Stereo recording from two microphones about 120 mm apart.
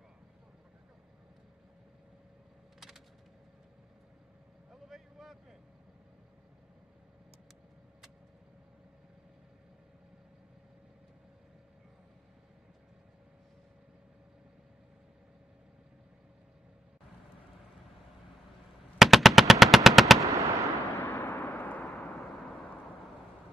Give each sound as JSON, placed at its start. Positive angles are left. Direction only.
{"t": 4.6, "sound": "vehicle", "side_deg": -5}
{"t": 18.9, "sound": "machine gun", "side_deg": 0}
{"t": 20.2, "sound": "machine gun", "side_deg": -25}
{"t": 21.0, "sound": "a sound", "side_deg": 20}